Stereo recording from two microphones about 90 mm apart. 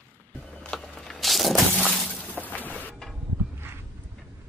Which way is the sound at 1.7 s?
15° left (ahead or behind).